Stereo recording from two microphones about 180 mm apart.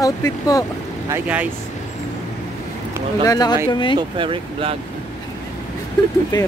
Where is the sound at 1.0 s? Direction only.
10° right (ahead or behind).